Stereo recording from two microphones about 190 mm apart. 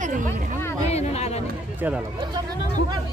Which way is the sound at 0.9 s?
35° left (ahead or behind).